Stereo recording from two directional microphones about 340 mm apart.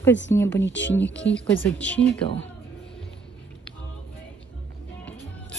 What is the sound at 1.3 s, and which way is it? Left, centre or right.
Speech, centre.